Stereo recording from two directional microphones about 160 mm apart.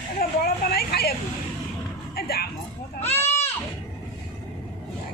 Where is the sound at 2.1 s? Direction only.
75° left (ahead or behind).